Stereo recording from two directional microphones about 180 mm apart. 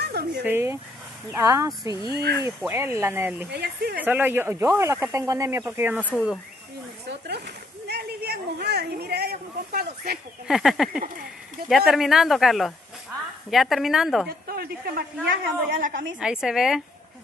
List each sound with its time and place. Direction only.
0.1 s a sound: 60° right (ahead or behind)
0.4 s speech: 10° right (ahead or behind)
3.4 s a woman's voice: 65° right (ahead or behind)
4.0 s speech: 10° right (ahead or behind)
7.1 s a sound: 65° right (ahead or behind)
10.4 s speech: centre (ahead or behind)
14.5 s a woman's voice: 55° right (ahead or behind)
16.2 s speech: 5° right (ahead or behind)